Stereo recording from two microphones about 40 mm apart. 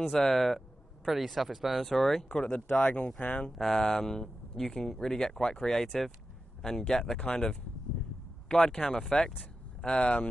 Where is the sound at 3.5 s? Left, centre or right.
Centre.